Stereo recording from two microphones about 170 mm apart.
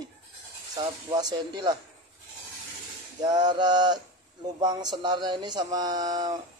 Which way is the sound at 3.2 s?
25° right (ahead or behind).